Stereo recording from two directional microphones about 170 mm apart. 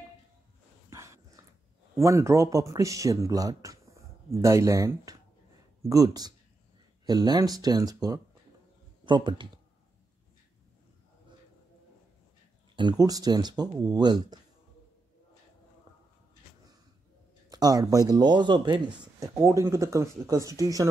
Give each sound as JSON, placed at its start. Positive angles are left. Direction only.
{"t": 0.8, "sound": "a sound", "side_deg": -15}
{"t": 2.0, "sound": "speech", "side_deg": -15}
{"t": 12.7, "sound": "speech", "side_deg": -25}
{"t": 17.5, "sound": "speech", "side_deg": -20}